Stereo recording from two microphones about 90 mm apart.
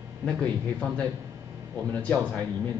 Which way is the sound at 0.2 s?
15° left (ahead or behind).